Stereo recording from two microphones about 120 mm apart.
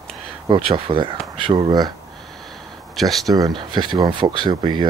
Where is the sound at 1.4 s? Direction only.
35° right (ahead or behind).